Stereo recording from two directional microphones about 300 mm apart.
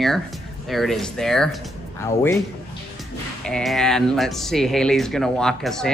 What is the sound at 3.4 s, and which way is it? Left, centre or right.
Speech, centre.